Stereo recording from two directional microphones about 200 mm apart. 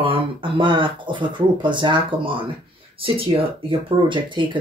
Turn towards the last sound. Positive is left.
turn(degrees=-25)  # may be behind; listen again after turning